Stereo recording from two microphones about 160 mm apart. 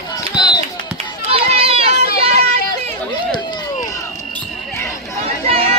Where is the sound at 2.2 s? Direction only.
40° right (ahead or behind).